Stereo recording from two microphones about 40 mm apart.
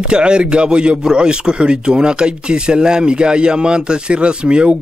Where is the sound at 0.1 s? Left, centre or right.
Right.